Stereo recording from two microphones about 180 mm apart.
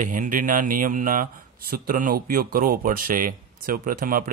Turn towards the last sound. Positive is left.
turn(degrees=-50)  # may be behind; listen again after turning